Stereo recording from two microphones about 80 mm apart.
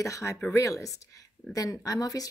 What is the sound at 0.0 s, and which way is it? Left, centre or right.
Speech, left.